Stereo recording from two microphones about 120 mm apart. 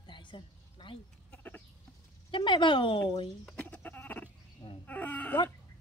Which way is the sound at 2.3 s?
40° left (ahead or behind).